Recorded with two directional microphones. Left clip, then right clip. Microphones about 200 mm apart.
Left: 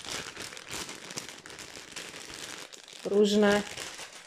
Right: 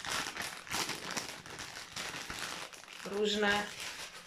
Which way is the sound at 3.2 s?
30° left (ahead or behind).